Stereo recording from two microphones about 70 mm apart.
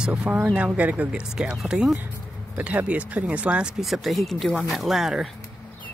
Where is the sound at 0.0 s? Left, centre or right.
Centre.